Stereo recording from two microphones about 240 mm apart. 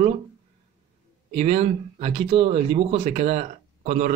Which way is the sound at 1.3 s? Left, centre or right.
Right.